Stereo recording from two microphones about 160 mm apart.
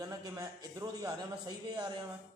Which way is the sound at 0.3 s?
20° right (ahead or behind).